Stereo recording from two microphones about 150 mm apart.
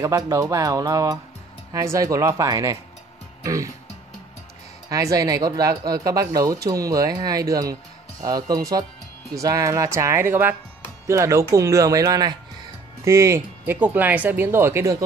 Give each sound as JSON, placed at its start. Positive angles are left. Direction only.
{"t": 0.0, "sound": "speech", "side_deg": -20}
{"t": 4.8, "sound": "speech", "side_deg": -20}